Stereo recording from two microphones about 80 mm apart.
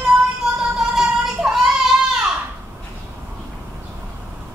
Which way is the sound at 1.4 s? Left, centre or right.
Centre.